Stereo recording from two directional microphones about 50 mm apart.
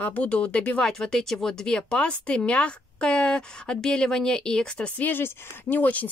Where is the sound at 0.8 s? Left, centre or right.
Centre.